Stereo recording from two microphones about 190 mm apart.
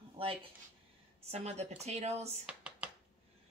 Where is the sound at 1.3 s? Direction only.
35° right (ahead or behind).